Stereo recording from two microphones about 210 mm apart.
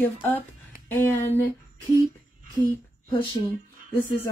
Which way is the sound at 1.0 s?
10° left (ahead or behind).